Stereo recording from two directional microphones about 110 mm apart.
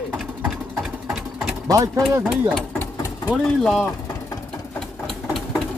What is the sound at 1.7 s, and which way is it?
Speech, 30° right (ahead or behind).